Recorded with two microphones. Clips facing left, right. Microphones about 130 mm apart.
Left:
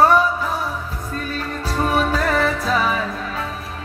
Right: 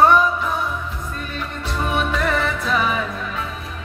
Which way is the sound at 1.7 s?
35° left (ahead or behind).